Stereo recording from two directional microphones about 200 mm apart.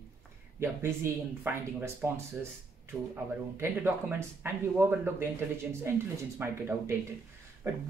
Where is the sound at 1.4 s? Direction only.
10° right (ahead or behind).